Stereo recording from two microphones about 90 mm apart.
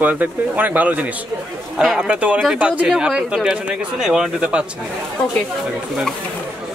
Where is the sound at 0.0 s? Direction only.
20° right (ahead or behind).